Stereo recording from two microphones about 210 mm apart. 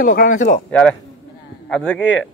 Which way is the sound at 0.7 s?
5° left (ahead or behind).